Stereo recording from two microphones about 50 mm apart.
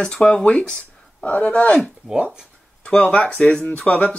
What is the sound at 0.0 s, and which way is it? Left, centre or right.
Speech, centre.